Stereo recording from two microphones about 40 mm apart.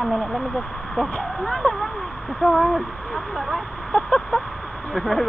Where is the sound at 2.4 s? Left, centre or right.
Right.